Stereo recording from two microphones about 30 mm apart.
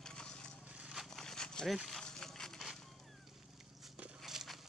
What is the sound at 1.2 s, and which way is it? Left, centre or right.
Dog, left.